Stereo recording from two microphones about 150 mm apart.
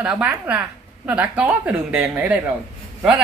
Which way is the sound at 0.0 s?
10° right (ahead or behind).